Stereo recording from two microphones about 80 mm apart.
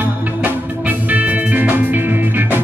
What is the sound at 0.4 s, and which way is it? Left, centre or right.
Music, centre.